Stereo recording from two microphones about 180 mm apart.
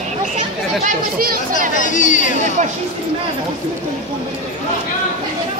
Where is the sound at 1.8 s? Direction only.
45° left (ahead or behind).